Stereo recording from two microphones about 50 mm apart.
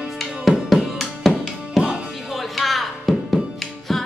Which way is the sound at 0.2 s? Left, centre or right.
Centre.